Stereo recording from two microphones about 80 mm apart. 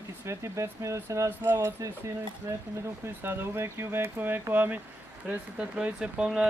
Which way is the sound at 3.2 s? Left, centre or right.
Right.